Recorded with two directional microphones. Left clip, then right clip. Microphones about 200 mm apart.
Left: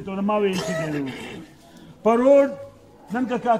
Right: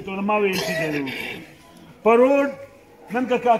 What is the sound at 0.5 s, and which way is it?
Speech, 15° right (ahead or behind).